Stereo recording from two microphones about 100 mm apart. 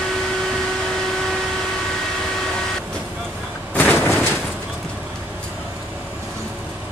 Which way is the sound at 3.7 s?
15° left (ahead or behind).